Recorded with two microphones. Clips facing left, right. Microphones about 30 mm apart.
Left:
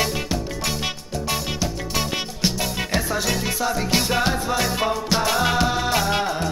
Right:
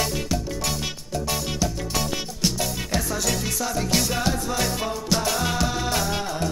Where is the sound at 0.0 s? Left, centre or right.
Left.